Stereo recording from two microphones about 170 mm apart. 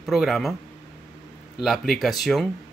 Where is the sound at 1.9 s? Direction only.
Centre (ahead or behind).